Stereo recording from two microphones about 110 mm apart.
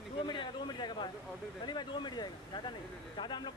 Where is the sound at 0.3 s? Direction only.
45° left (ahead or behind).